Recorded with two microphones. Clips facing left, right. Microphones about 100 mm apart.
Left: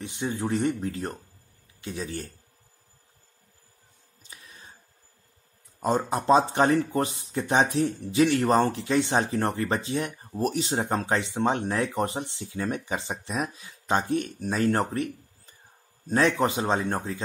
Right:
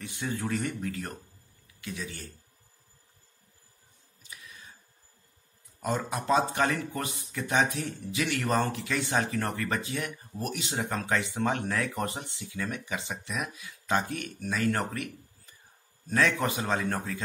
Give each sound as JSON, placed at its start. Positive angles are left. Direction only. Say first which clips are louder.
{"t": 0.0, "sound": "a man's voice", "louder": "left 4 dB", "side_deg": 25}
{"t": 4.2, "sound": "a sound", "louder": "even", "side_deg": 30}
{"t": 5.8, "sound": "a man's voice", "louder": "left 6 dB", "side_deg": 30}